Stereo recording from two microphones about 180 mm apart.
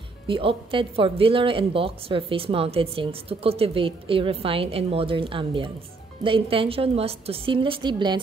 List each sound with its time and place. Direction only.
0.3 s a woman's voice: 30° right (ahead or behind)